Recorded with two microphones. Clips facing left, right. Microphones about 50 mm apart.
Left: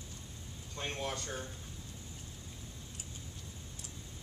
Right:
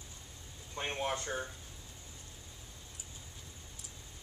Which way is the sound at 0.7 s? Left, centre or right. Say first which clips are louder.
Right 3 dB; right.